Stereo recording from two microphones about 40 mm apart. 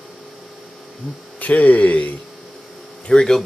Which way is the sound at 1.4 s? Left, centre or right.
Left.